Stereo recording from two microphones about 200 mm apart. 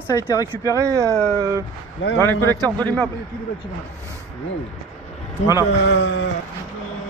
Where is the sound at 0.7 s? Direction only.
15° right (ahead or behind).